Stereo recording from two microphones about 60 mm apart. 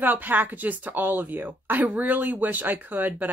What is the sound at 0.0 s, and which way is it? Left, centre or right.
A woman's voice, right.